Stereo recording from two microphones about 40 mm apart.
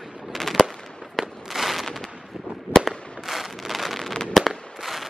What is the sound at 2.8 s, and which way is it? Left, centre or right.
Fireworks, centre.